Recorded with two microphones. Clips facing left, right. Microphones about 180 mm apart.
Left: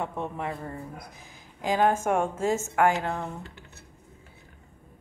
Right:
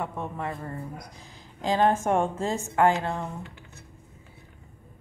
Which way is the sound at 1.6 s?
15° left (ahead or behind).